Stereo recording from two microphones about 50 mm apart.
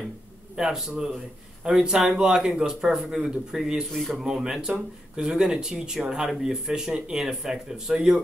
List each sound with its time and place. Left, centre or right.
0.6 s speech: centre
3.9 s speech: centre
4.3 s speech: centre
5.3 s speech: centre